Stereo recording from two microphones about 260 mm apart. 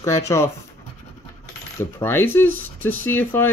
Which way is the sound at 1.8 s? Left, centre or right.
Centre.